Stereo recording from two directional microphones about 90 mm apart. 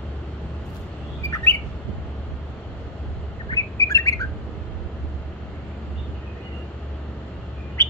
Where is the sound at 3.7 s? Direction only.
35° left (ahead or behind).